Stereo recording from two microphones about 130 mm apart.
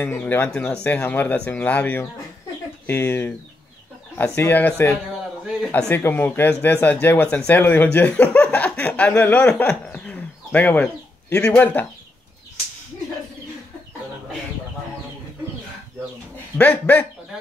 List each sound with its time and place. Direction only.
0.1 s speech: 15° left (ahead or behind)
16.5 s speech: 10° left (ahead or behind)